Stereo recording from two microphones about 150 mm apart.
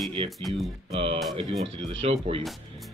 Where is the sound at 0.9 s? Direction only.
40° right (ahead or behind).